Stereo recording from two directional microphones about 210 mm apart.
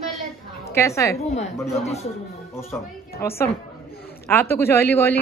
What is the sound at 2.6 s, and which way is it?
A woman's voice, 10° left (ahead or behind).